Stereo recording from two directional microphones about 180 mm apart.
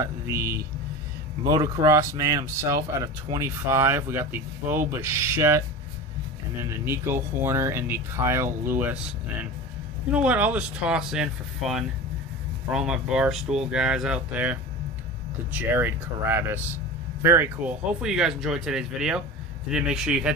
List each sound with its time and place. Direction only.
0.0 s speech: 15° right (ahead or behind)
6.6 s speech: 15° right (ahead or behind)
10.1 s speech: 10° right (ahead or behind)